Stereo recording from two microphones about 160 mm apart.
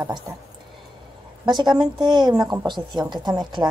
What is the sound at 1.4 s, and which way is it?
Speech, 30° right (ahead or behind).